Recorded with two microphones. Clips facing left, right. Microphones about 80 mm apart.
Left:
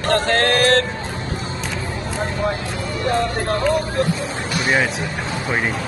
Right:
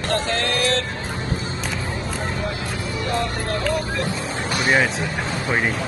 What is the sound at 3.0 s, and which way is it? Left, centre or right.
Music, left.